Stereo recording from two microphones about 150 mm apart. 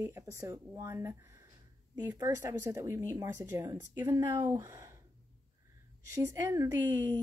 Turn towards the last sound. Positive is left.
turn(degrees=-15)  # may be behind; listen again after turning